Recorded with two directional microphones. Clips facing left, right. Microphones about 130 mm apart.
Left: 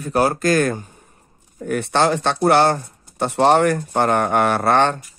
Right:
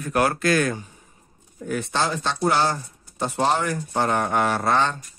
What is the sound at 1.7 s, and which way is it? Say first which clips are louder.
Speech: left 7 dB; 60° left (ahead or behind).